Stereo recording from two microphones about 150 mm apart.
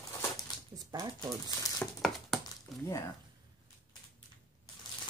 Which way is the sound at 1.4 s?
25° left (ahead or behind).